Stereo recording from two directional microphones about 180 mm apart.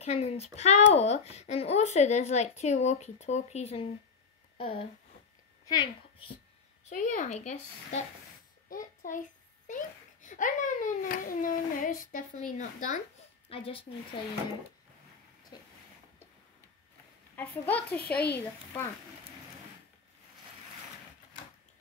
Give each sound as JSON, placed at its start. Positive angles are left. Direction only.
{"t": 0.0, "sound": "a child's voice", "side_deg": 35}
{"t": 6.9, "sound": "a child's voice", "side_deg": 45}
{"t": 13.5, "sound": "speech", "side_deg": 30}
{"t": 17.4, "sound": "a woman's voice", "side_deg": 10}